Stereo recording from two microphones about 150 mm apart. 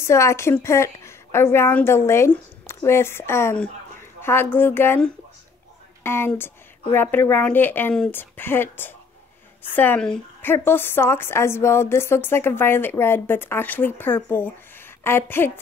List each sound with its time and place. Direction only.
0.0 s a woman's voice: 20° left (ahead or behind)